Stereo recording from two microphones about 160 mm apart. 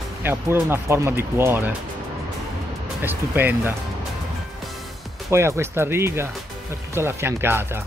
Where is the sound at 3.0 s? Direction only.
10° right (ahead or behind).